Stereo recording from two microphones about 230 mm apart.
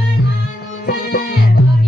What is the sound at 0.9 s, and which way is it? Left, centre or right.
Music, left.